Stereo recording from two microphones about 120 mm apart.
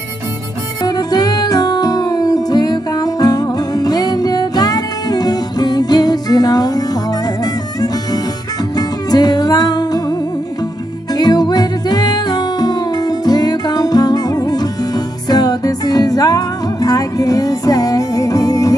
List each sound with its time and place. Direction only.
0.8 s music: 35° left (ahead or behind)
8.7 s music: 35° left (ahead or behind)
11.1 s music: 35° left (ahead or behind)